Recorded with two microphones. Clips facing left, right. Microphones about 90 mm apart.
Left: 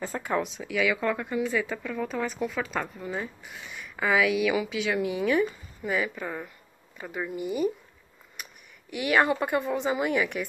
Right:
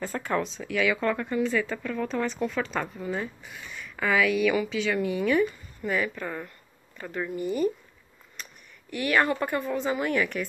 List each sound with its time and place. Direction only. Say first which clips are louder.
0.0 s speech: even; 15° left (ahead or behind)
3.5 s speech: even; 15° left (ahead or behind)
8.4 s a sound: even; 15° left (ahead or behind)
8.9 s speech: left 1 dB; 20° left (ahead or behind)